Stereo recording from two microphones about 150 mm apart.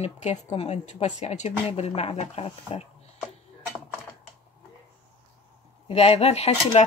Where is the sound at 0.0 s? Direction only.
45° left (ahead or behind).